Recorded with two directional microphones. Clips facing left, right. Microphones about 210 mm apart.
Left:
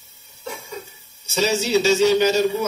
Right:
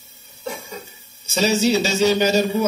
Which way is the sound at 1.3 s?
40° right (ahead or behind).